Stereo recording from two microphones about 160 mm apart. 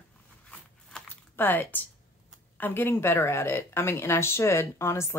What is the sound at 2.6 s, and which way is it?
Speech, 10° left (ahead or behind).